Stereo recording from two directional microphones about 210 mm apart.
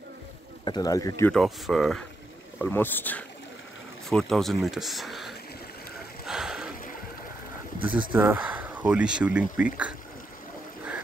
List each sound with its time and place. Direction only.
0.7 s speech: 20° left (ahead or behind)
1.3 s speech: centre (ahead or behind)
6.2 s a sound: centre (ahead or behind)
8.1 s speech: 10° right (ahead or behind)